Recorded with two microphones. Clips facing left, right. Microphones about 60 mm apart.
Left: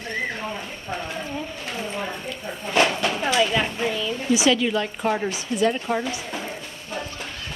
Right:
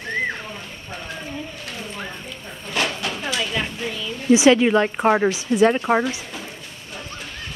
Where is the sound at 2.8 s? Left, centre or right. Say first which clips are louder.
Left 3 dB; centre.